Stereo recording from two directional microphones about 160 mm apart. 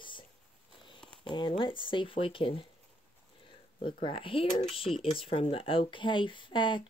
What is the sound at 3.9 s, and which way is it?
Speech, 35° left (ahead or behind).